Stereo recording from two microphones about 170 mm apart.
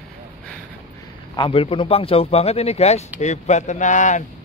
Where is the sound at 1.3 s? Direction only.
30° left (ahead or behind); by 4.2 s 45° left (ahead or behind).